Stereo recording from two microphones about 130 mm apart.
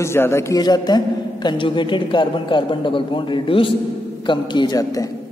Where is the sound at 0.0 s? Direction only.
20° left (ahead or behind).